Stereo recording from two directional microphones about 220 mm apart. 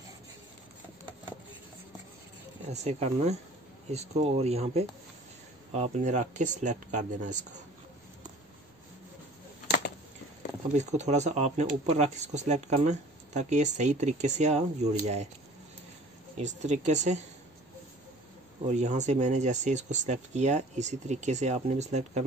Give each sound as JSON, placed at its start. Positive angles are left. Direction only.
{"t": 2.7, "sound": "speech", "side_deg": -30}
{"t": 10.7, "sound": "speech", "side_deg": -30}
{"t": 16.3, "sound": "speech", "side_deg": -30}
{"t": 18.7, "sound": "speech", "side_deg": -30}